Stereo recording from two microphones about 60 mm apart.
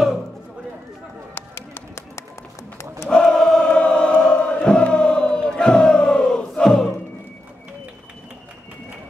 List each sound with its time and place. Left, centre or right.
1.3 s music: left
3.1 s choir: centre
3.6 s chant: centre